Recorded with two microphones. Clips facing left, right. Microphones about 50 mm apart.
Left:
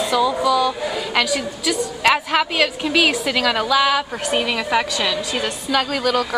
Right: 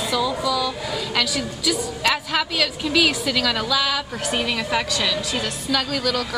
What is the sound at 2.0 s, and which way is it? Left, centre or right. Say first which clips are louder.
A woman's voice: left 5 dB; left.